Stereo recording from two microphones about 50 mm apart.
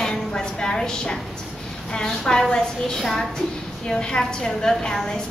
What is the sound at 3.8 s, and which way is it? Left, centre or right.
A woman's voice, centre.